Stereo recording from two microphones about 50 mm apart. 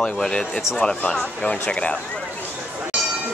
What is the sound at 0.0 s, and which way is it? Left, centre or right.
Speech, centre.